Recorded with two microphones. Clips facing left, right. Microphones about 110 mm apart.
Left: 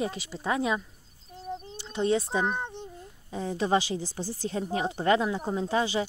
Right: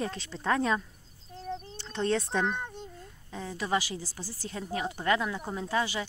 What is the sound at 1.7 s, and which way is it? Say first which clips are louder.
Speech: left 3 dB; 10° left (ahead or behind).